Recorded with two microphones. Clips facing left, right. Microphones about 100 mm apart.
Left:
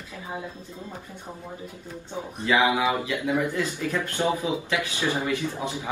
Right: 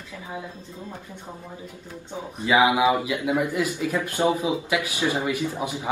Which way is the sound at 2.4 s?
20° right (ahead or behind).